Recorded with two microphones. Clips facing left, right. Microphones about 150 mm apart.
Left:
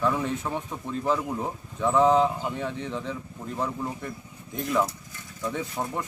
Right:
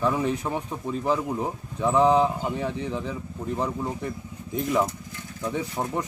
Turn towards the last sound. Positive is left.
turn(degrees=-15)  # may be behind; listen again after turning